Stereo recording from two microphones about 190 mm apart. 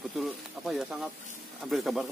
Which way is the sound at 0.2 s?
Centre (ahead or behind).